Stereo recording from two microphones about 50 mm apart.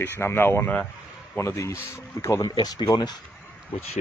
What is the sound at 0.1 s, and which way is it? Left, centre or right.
Speech, left.